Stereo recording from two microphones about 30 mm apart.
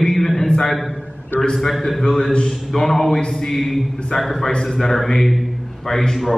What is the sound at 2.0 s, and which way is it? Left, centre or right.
A man's voice, centre.